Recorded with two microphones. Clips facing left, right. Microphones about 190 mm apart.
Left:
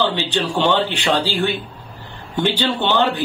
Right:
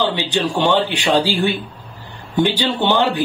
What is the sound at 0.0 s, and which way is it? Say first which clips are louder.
Speech: right 1 dB; 15° right (ahead or behind).